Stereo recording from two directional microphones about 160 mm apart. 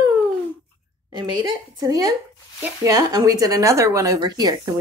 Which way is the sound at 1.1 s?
30° right (ahead or behind).